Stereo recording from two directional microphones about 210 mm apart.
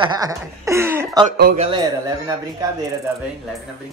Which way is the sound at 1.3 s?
50° right (ahead or behind).